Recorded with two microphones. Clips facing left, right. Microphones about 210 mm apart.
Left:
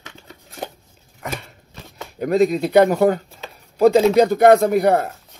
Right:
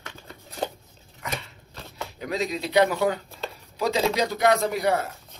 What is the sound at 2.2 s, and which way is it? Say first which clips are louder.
Speech: left 12 dB; 55° left (ahead or behind).